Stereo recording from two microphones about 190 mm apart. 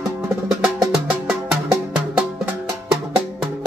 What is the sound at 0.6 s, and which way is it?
Music, 5° right (ahead or behind).